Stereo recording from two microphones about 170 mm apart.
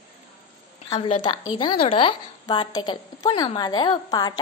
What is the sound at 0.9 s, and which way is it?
A woman's voice, 30° left (ahead or behind).